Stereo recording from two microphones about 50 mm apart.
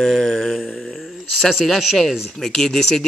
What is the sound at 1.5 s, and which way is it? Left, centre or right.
Speech, centre.